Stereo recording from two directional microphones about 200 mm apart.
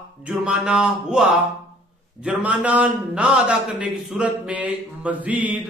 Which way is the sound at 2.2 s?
5° right (ahead or behind).